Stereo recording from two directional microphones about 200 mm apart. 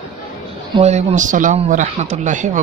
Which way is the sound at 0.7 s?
35° right (ahead or behind).